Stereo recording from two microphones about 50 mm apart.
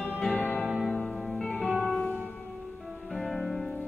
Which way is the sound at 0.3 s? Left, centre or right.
Left.